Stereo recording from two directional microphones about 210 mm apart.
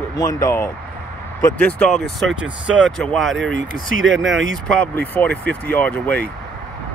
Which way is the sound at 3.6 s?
40° left (ahead or behind).